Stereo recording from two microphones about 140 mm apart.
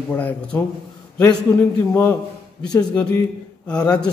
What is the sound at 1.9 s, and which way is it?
A man's voice, 15° left (ahead or behind).